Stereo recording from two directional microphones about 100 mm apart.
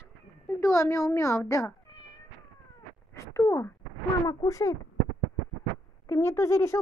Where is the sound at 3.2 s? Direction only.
30° left (ahead or behind).